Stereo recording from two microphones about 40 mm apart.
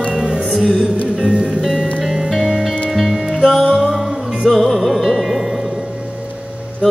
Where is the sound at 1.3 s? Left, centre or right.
Right.